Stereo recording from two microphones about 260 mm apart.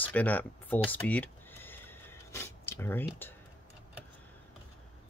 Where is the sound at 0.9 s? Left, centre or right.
Centre.